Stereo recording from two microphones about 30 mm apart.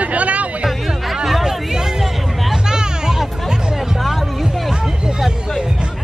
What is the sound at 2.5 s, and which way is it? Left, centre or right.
Hubbub, right.